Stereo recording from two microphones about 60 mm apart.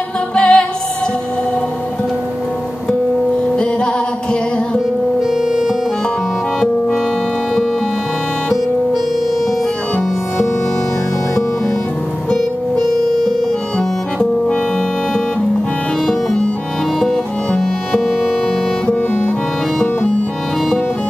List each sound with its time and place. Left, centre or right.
0.4 s music: centre
3.5 s music: centre
16.1 s music: centre